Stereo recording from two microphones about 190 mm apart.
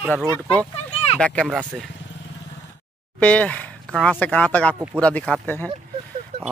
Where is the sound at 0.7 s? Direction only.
35° left (ahead or behind).